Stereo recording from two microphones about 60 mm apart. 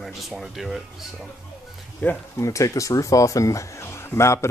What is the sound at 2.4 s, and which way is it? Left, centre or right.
Speech, left.